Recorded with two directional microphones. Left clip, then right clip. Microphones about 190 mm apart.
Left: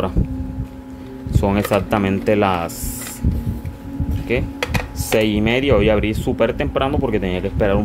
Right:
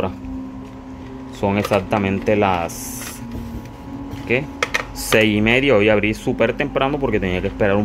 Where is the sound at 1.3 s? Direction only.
10° left (ahead or behind).